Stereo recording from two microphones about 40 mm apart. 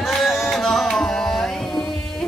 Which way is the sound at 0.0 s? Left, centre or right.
Centre.